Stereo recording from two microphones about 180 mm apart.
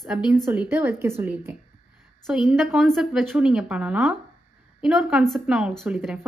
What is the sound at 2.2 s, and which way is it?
A woman's voice, centre (ahead or behind).